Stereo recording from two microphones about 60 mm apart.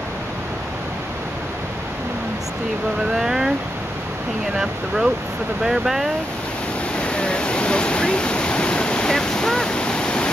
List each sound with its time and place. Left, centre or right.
3.2 s a sound: centre
4.6 s speech: centre
7.0 s waterfall: centre